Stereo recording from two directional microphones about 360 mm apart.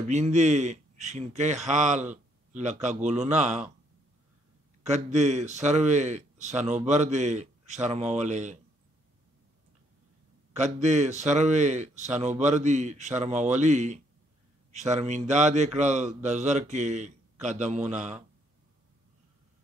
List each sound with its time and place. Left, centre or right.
0.1 s a man's voice: centre
4.8 s a man's voice: centre
10.5 s a man's voice: centre